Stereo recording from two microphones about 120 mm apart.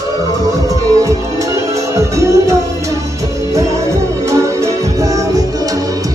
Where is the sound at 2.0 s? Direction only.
25° right (ahead or behind).